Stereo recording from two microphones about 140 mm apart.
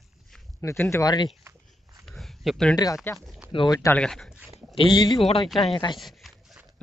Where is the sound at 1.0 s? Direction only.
30° left (ahead or behind).